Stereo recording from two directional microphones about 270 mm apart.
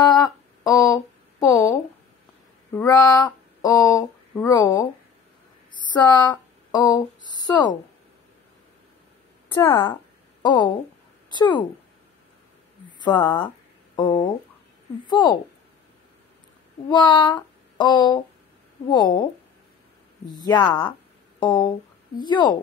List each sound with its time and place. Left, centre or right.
0.0 s humming: centre
1.4 s speech: centre
2.7 s a sound: centre
9.5 s a woman's voice: centre
13.0 s speech: centre
16.9 s child singing: centre
18.9 s speech: centre
20.2 s speech: centre